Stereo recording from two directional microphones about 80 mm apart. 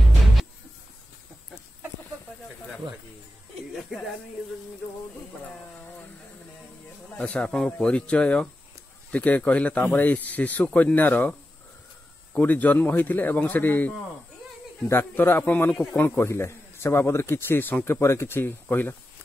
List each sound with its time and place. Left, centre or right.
7.2 s speech: centre
12.4 s speech: centre
18.0 s speech: left